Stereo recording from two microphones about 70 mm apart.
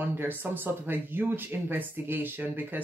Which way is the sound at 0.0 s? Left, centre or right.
Right.